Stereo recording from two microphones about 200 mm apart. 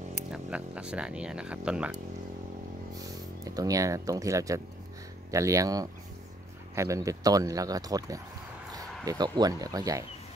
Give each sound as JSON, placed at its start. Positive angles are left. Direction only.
{"t": 0.3, "sound": "speech", "side_deg": -5}
{"t": 3.4, "sound": "speech", "side_deg": -15}